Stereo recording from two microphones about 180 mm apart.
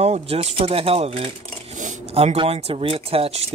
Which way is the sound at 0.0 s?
35° right (ahead or behind).